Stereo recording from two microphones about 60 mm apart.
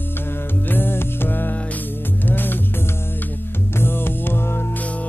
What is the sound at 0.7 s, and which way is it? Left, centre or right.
Music, left.